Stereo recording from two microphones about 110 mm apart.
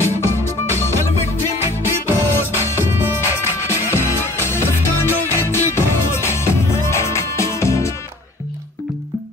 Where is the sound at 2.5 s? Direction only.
25° left (ahead or behind).